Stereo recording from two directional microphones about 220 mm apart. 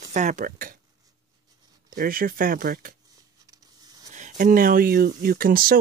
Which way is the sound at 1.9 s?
40° right (ahead or behind).